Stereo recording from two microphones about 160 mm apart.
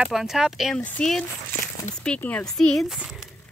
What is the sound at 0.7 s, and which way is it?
Speech, 10° left (ahead or behind).